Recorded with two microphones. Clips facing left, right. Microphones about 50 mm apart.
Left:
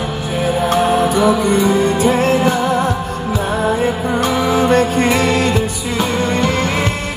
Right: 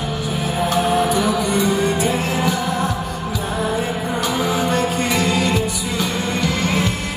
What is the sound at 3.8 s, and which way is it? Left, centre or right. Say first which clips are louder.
Music: left 6 dB; left.